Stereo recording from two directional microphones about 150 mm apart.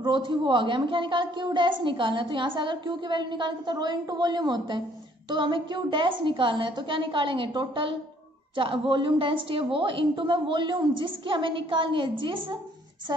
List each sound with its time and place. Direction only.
0.0 s a woman's voice: 30° right (ahead or behind)